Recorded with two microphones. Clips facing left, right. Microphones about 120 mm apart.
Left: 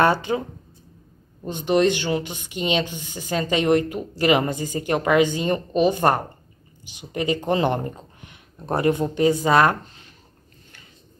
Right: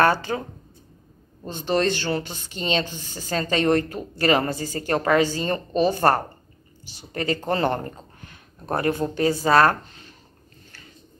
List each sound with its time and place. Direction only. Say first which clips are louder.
0.0 s speech: left 1 dB; 20° left (ahead or behind)